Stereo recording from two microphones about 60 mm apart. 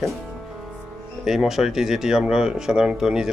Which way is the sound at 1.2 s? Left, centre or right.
Centre.